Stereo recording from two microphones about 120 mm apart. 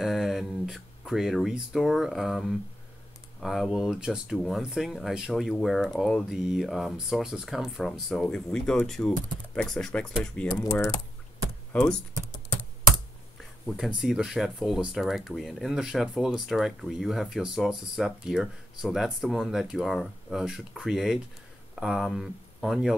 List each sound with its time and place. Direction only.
0.0 s speech: centre (ahead or behind)
10.5 s speech: 30° left (ahead or behind)
11.7 s speech: 5° left (ahead or behind)
13.8 s speech: 5° right (ahead or behind)